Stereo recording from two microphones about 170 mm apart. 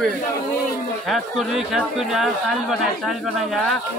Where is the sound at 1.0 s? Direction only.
Centre (ahead or behind).